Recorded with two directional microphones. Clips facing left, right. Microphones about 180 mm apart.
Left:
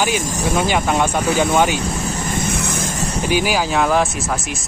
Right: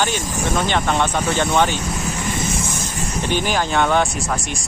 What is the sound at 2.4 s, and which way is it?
Vehicle, 60° left (ahead or behind).